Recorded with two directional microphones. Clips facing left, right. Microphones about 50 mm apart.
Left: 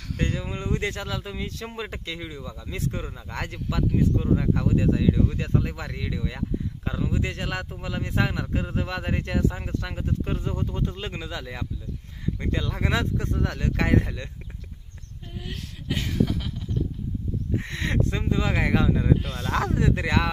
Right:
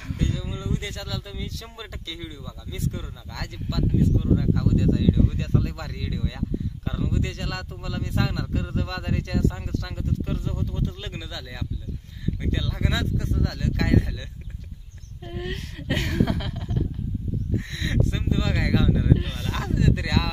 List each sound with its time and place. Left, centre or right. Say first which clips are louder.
0.2 s speech: left 2 dB; left
15.3 s speech: right 5 dB; right
17.6 s speech: left 1 dB; left
19.3 s speech: left 3 dB; left